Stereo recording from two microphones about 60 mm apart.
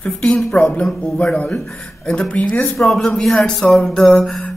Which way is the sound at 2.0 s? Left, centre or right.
Centre.